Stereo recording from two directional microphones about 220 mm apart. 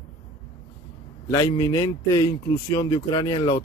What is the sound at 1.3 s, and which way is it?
Speech, 15° left (ahead or behind).